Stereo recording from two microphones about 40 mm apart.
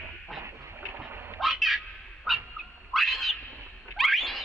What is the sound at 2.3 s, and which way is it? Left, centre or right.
Goose, centre.